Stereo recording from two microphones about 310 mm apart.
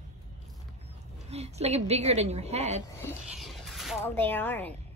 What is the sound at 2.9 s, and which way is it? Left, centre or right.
Speech, centre.